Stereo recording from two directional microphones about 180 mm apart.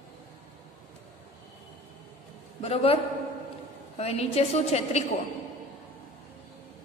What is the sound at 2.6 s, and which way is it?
Speech, 35° left (ahead or behind).